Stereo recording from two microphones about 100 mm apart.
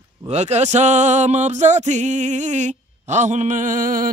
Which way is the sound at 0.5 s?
90° right.